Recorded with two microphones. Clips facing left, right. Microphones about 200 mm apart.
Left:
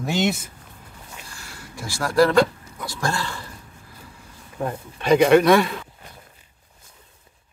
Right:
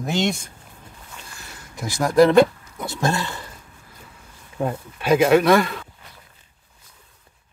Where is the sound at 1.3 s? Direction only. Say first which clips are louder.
Even; 20° right (ahead or behind).